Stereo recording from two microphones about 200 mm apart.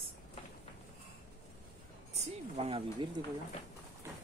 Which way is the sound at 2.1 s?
30° right (ahead or behind).